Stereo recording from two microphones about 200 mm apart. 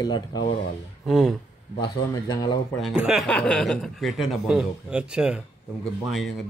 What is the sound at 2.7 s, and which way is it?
Speech, centre (ahead or behind).